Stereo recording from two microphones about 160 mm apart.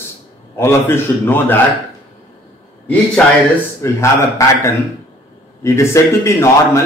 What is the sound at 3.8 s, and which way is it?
Speech, 20° left (ahead or behind).